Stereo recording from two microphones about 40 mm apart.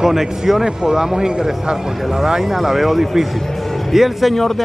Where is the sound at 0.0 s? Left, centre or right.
Centre.